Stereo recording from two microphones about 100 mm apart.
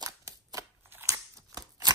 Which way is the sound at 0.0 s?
35° right (ahead or behind).